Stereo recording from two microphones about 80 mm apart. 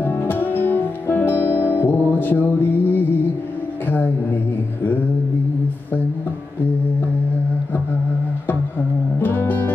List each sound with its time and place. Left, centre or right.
0.0 s music: left
3.8 s a sound: left
8.5 s music: left